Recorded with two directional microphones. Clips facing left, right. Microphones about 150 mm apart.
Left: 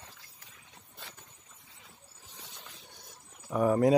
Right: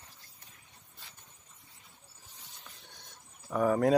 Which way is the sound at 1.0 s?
75° left (ahead or behind).